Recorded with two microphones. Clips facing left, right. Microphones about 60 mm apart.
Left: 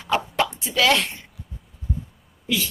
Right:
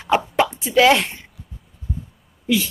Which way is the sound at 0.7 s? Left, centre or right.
Right.